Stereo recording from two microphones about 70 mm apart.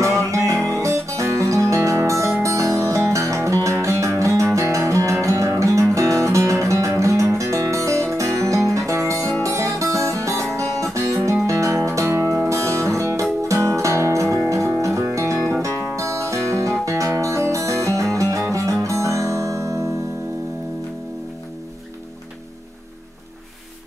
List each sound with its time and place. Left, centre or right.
0.0 s music: right